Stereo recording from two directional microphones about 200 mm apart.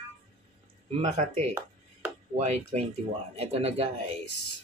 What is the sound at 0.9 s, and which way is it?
Speech, 30° right (ahead or behind).